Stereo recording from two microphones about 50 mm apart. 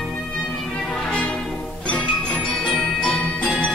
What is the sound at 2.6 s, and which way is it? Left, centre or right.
Jingle bell, centre.